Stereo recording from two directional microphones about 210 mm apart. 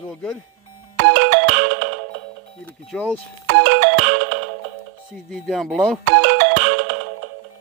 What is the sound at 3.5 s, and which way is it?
Ringtone, 70° right (ahead or behind).